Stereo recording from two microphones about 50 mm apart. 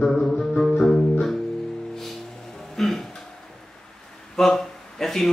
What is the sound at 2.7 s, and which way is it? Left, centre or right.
Music, centre.